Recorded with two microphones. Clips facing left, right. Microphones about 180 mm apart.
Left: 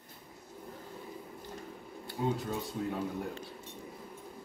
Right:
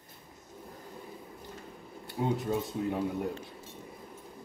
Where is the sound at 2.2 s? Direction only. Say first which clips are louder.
Right 2 dB; 20° right (ahead or behind).